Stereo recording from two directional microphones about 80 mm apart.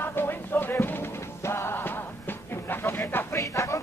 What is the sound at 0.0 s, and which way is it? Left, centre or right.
Music, left.